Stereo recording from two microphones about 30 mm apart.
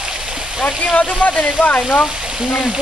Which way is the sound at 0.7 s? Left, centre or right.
Left.